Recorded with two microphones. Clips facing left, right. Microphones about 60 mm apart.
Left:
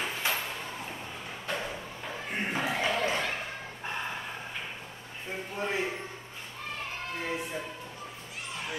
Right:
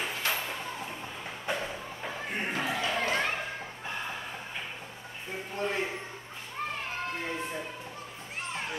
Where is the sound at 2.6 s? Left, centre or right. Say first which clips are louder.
Left 2 dB; left.